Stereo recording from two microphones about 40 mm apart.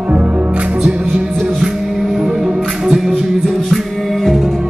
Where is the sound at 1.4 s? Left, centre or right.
Centre.